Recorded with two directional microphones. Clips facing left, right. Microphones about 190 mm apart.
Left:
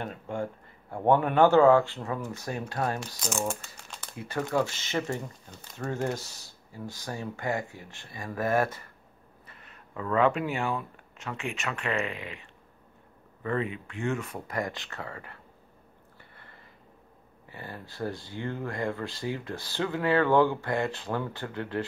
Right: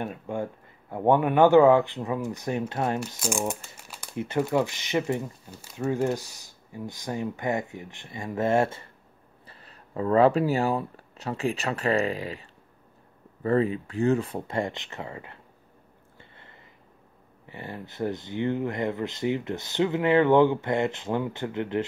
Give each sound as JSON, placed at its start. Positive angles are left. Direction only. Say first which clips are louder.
{"t": 0.0, "sound": "speech", "louder": "right 2 dB", "side_deg": -15}
{"t": 4.1, "sound": "speech", "louder": "right 4 dB", "side_deg": -25}
{"t": 16.2, "sound": "a sound", "louder": "right 3 dB", "side_deg": -20}
{"t": 17.5, "sound": "speech", "louder": "right 4 dB", "side_deg": -20}